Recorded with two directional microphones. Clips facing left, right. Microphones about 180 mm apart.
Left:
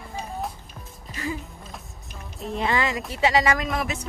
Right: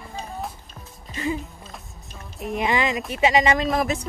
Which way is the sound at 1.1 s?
25° right (ahead or behind).